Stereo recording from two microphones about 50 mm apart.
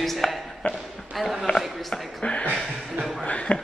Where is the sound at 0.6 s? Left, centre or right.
Left.